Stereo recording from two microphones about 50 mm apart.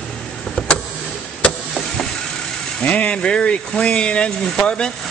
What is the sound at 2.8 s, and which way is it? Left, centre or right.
Speech, left.